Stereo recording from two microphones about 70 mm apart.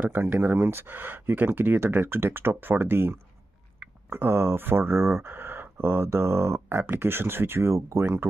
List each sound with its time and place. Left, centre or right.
0.0 s speech: right